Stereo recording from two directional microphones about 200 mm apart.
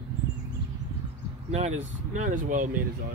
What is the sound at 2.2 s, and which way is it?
Speech, 40° right (ahead or behind).